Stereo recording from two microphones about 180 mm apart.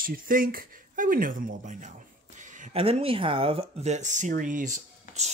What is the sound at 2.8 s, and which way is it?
Speech, 30° right (ahead or behind).